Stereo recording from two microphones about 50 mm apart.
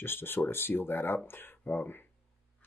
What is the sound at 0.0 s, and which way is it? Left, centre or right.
Speech, left.